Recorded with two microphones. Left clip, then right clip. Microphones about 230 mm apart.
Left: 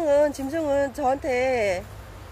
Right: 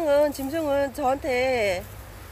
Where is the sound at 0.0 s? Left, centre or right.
Centre.